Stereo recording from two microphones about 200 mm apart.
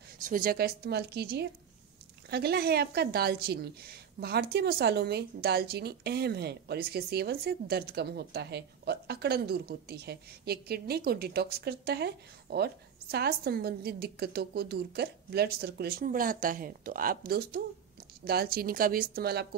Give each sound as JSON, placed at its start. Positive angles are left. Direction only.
{"t": 0.2, "sound": "a woman's voice", "side_deg": -45}